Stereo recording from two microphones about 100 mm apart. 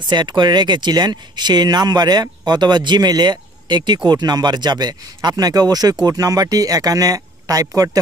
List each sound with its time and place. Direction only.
0.0 s speech: 45° right (ahead or behind)